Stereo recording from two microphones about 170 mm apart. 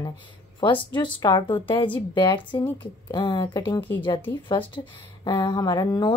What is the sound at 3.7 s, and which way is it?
Speech, 10° left (ahead or behind).